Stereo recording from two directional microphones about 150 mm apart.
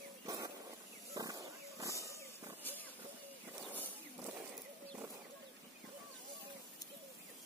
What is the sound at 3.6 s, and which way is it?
Wild animals, 10° right (ahead or behind).